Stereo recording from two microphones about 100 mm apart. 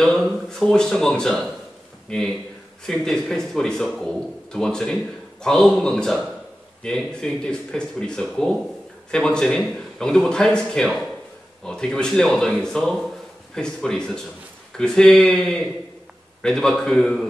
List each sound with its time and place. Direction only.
0.0 s speech: 5° left (ahead or behind)